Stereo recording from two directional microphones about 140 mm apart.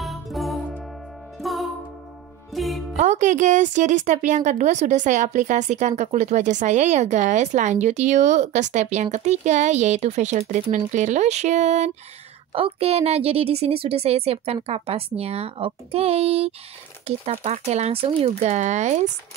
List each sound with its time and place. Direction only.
0.0 s music: centre (ahead or behind)
3.0 s speech: 60° right (ahead or behind)
12.5 s a woman's voice: 45° right (ahead or behind)